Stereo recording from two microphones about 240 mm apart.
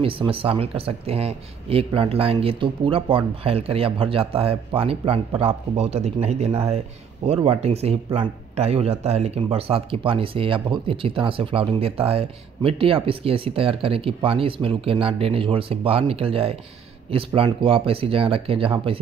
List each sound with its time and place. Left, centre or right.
0.0 s speech: right